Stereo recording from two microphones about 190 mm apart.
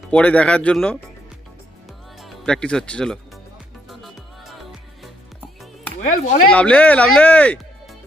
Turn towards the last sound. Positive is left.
turn(degrees=10)  # may be behind; listen again after turning